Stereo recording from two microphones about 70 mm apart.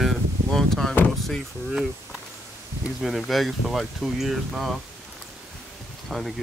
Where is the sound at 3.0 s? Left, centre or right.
Centre.